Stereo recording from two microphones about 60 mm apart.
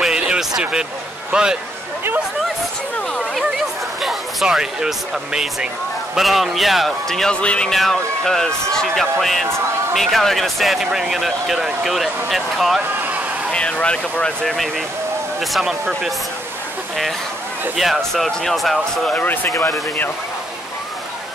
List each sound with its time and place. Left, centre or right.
0.0 s a sound: centre
0.6 s speech: centre
3.4 s speech: centre
7.3 s speech: centre
7.7 s speech: centre
13.5 s speech: centre
14.4 s speech: centre
15.5 s speech: centre
17.7 s speech: centre
19.1 s speech: left